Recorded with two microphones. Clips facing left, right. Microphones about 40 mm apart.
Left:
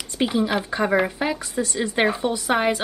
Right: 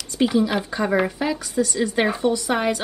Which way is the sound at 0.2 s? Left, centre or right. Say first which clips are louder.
Right 2 dB; centre.